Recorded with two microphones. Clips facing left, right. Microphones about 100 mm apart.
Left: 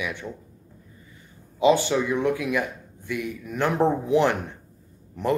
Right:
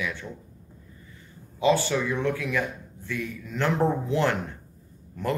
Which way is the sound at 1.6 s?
20° left (ahead or behind).